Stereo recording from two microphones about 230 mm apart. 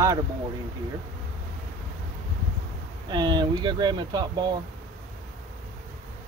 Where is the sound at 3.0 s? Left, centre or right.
Centre.